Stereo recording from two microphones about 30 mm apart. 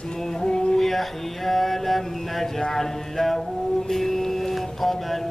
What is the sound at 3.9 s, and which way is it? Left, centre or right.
Mantra, centre.